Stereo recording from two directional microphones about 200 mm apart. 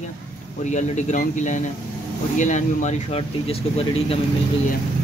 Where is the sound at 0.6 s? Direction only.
35° left (ahead or behind).